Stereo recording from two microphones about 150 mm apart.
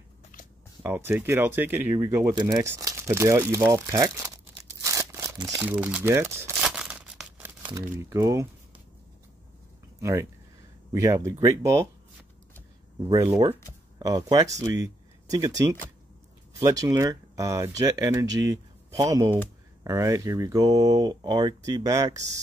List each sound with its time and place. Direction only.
0.8 s speech: 15° right (ahead or behind)
4.8 s a sound: 20° right (ahead or behind)
5.6 s speech: 10° right (ahead or behind)
6.6 s tearing: 5° right (ahead or behind)
7.7 s speech: 20° right (ahead or behind)
9.9 s speech: 20° right (ahead or behind)
13.1 s speech: 20° right (ahead or behind)